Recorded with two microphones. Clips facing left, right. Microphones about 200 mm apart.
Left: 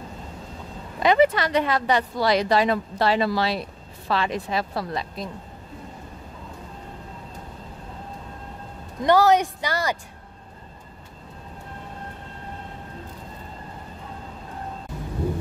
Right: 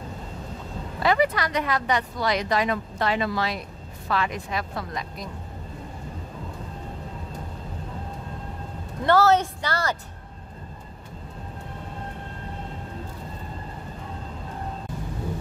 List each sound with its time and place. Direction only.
0.9 s speech: 20° left (ahead or behind)
9.0 s a woman's voice: 15° left (ahead or behind)